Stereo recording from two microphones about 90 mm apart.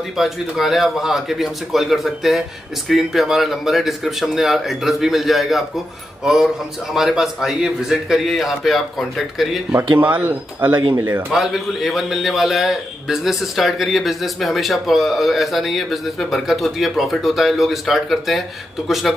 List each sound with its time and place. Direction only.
0.2 s a man's voice: centre (ahead or behind)
9.9 s speech: 20° right (ahead or behind)
11.2 s a man's voice: centre (ahead or behind)